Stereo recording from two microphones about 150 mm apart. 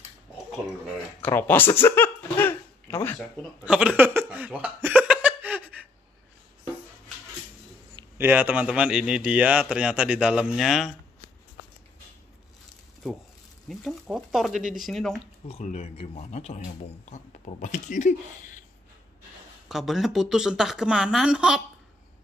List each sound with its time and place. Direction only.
1.2 s a sound: 15° left (ahead or behind)
3.6 s a sound: 5° right (ahead or behind)
8.2 s a man's voice: 10° right (ahead or behind)
13.7 s a woman's voice: centre (ahead or behind)
15.4 s speech: 45° left (ahead or behind)
19.7 s a woman's voice: centre (ahead or behind)